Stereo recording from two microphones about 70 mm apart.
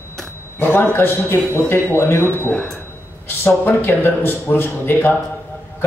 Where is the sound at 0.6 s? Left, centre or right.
Left.